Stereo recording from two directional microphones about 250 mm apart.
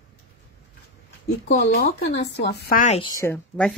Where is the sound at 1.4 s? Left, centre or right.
Left.